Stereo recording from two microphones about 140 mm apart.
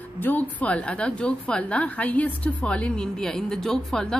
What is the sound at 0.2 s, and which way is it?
A woman's voice, 10° left (ahead or behind).